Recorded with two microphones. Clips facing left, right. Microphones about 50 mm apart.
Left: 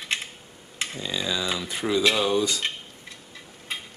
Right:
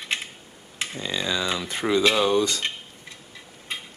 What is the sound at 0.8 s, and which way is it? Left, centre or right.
Tick-tock, centre.